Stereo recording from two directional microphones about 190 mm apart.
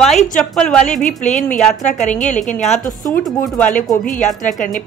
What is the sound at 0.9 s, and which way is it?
Speech, 40° left (ahead or behind).